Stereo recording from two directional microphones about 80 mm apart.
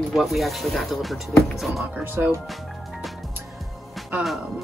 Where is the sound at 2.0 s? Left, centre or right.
Right.